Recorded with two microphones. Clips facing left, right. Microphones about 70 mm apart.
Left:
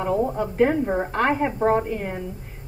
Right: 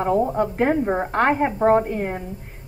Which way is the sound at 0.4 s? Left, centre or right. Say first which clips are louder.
Right 1 dB; right.